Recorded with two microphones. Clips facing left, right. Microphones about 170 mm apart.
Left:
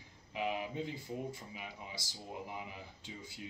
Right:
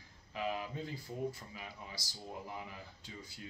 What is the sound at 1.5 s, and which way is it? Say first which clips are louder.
Speech: left 1 dB; 15° left (ahead or behind).